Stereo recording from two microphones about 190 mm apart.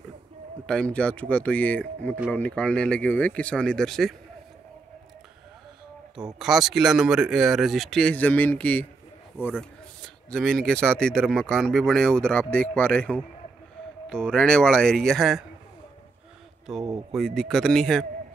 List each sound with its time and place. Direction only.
0.7 s a man's voice: 5° left (ahead or behind)
6.1 s a man's voice: centre (ahead or behind)
16.7 s a man's voice: centre (ahead or behind)